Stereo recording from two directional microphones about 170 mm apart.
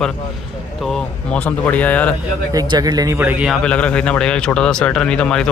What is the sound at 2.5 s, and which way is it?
Speech, 25° right (ahead or behind).